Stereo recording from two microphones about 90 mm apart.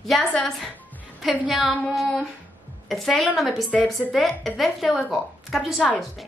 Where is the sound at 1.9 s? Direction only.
5° left (ahead or behind).